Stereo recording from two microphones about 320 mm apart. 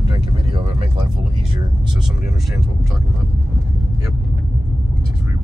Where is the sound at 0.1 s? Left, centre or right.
Centre.